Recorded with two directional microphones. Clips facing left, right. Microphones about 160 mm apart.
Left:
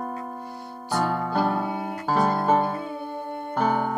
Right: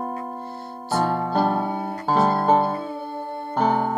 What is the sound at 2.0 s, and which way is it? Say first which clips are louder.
Music: right 3 dB; 30° right (ahead or behind).